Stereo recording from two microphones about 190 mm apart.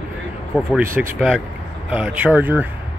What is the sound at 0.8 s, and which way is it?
Speech, 15° right (ahead or behind).